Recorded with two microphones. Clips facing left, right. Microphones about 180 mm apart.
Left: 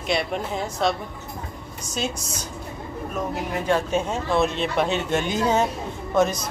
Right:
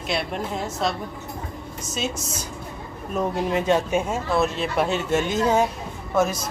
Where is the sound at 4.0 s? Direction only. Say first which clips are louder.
Even; 5° right (ahead or behind).